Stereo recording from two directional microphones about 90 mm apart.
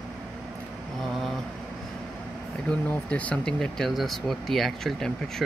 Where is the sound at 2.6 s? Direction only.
15° left (ahead or behind).